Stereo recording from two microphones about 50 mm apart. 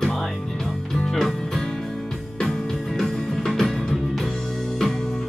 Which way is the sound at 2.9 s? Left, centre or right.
Centre.